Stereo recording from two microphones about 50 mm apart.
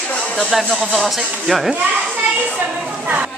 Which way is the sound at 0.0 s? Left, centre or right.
Left.